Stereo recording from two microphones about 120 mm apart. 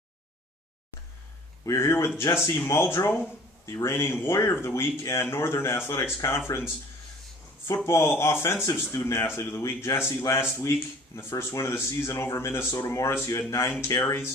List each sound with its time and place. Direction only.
1.7 s a man's voice: 25° left (ahead or behind)
7.6 s a man's voice: 25° left (ahead or behind)